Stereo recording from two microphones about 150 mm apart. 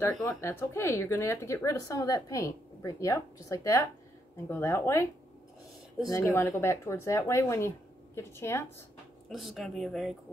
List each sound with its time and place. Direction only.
0.2 s speech: 20° left (ahead or behind)
6.0 s speech: 20° left (ahead or behind)
9.3 s speech: centre (ahead or behind)